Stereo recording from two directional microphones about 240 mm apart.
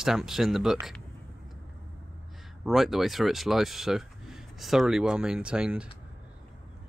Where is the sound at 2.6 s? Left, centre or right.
Centre.